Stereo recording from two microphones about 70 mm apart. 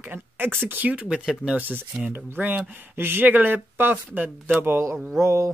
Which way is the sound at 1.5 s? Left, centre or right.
Right.